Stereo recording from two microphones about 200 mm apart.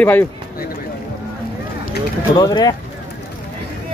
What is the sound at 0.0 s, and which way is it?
Speech, 10° left (ahead or behind).